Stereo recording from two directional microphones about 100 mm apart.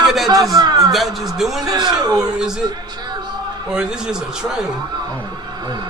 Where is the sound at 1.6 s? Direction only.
40° right (ahead or behind).